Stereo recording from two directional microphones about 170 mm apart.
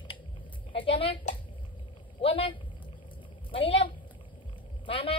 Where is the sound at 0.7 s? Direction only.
30° left (ahead or behind).